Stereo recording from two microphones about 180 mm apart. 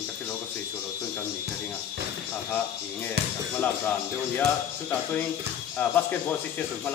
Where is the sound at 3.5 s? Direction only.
10° left (ahead or behind).